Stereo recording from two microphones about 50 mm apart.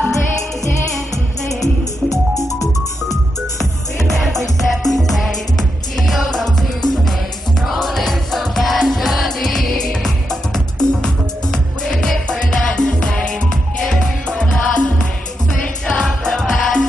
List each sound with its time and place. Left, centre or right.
4.6 s music: centre; by 16.1 s left
16.3 s music: centre